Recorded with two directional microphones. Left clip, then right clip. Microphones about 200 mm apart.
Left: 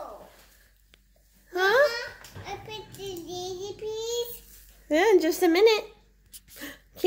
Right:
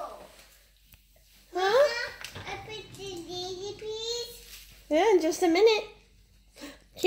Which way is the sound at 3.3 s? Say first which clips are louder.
Even; 50° left (ahead or behind).